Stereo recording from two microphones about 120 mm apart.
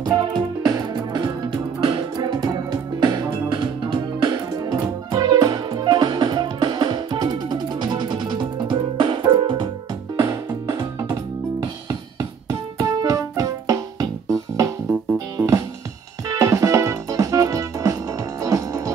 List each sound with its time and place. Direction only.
0.0 s music: 35° right (ahead or behind)
10.1 s music: 30° right (ahead or behind)
11.6 s keyboard: 30° right (ahead or behind)
15.3 s music: 25° right (ahead or behind)
16.3 s organ: 25° right (ahead or behind)
18.4 s music: 30° right (ahead or behind)